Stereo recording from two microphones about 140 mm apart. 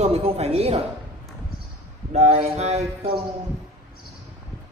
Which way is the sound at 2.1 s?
50° right (ahead or behind).